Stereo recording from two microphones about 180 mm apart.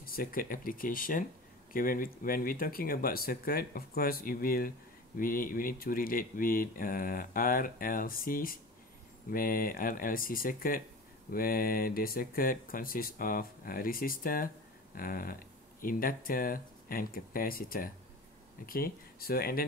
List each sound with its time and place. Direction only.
0.0 s speech: 50° left (ahead or behind)